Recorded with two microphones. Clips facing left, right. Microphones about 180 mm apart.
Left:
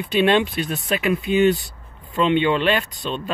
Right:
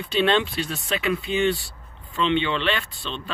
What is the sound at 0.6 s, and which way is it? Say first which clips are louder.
Speech: left 4 dB; 50° left (ahead or behind).